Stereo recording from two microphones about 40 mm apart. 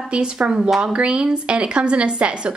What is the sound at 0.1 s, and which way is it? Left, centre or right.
A woman's voice, right.